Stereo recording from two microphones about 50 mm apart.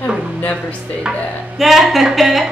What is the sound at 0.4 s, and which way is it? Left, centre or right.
Speech, left.